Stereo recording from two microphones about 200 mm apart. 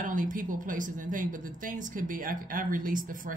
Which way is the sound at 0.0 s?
40° right (ahead or behind).